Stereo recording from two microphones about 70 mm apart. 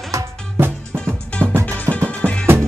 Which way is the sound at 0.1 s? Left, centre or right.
Right.